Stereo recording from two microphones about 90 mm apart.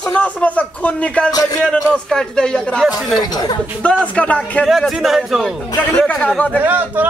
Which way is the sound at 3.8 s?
15° left (ahead or behind).